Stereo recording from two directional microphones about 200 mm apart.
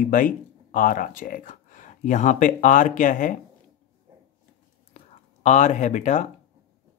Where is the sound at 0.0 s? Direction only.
40° left (ahead or behind).